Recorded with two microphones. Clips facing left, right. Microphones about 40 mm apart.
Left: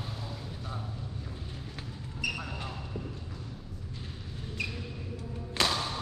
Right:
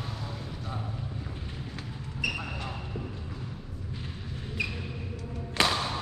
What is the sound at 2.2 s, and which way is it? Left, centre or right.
Basketball bounce, centre.